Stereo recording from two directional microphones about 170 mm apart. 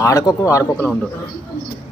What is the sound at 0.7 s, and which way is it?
Speech, 5° left (ahead or behind).